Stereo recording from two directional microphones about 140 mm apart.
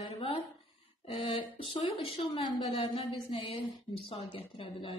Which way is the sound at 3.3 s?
45° left (ahead or behind).